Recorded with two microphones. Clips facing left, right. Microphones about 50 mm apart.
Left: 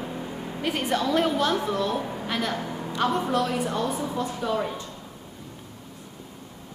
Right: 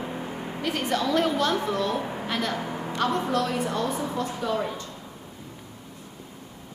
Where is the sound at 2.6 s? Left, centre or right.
Right.